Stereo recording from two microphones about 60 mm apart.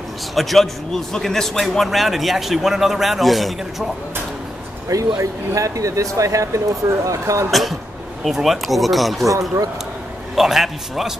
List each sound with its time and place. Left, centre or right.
0.3 s a man's voice: centre
4.8 s speech: right
8.2 s a man's voice: centre
10.3 s a man's voice: centre